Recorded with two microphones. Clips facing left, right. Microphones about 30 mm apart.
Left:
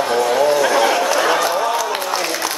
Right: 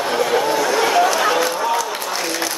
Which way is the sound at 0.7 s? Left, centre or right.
Centre.